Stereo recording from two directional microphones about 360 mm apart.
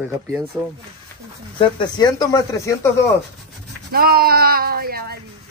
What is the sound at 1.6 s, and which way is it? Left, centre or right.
Speech, centre.